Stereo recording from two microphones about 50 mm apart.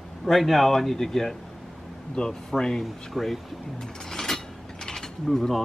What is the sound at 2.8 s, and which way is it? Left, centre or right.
Speech, centre.